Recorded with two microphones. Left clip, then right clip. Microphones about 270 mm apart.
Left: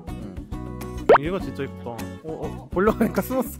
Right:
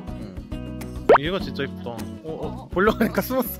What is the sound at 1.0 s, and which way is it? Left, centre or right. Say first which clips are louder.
Speech: even; centre.